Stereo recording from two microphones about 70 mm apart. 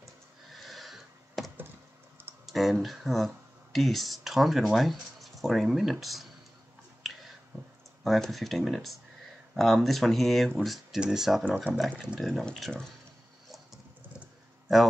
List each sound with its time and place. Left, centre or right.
0.0 s a sound: centre
2.4 s speech: centre
7.0 s finger snapping: centre
8.0 s speech: centre
11.4 s speech: right
12.2 s speech: centre